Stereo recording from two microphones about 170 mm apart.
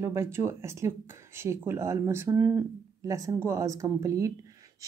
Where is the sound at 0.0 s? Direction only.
15° right (ahead or behind).